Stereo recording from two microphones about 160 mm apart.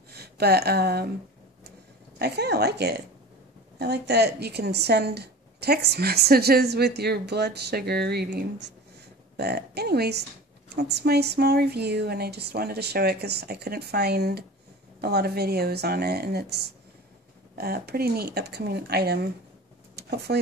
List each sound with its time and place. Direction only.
0.1 s speech: 80° right
2.1 s speech: 90° right
17.6 s speech: 75° right (ahead or behind); by 20.3 s 90° right